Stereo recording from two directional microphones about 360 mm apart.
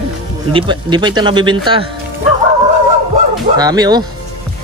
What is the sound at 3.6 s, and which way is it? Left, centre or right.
Speech, centre.